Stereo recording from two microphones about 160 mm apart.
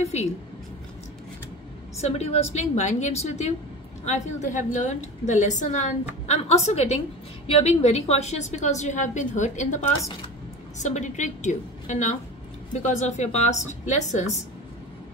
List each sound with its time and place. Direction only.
0.0 s a woman's voice: 45° left (ahead or behind)
2.0 s a woman's voice: 40° left (ahead or behind)
10.8 s a woman's voice: 50° left (ahead or behind)